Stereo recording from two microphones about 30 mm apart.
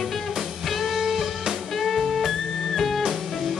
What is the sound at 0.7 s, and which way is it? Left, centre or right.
Music, centre.